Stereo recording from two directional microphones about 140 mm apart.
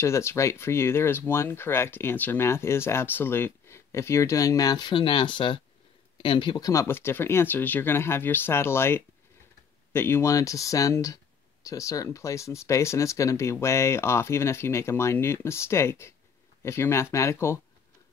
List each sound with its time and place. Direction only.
0.0 s speech: 20° left (ahead or behind)